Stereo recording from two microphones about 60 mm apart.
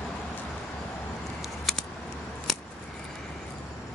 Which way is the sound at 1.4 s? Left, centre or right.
Centre.